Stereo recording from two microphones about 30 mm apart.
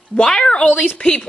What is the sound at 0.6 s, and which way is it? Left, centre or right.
Speech, left.